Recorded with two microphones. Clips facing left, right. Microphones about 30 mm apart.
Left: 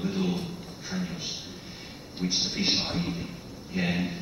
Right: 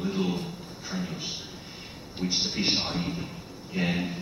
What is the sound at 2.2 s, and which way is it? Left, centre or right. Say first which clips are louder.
A man's voice: even; centre.